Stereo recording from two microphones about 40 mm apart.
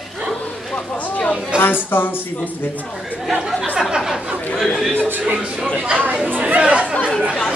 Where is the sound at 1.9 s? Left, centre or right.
Left.